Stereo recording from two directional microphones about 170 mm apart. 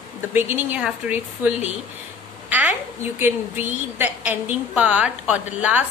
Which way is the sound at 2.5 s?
10° right (ahead or behind).